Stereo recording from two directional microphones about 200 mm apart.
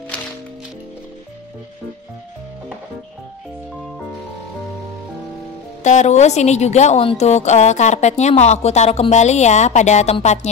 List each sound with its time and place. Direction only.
5.9 s speech: 35° left (ahead or behind)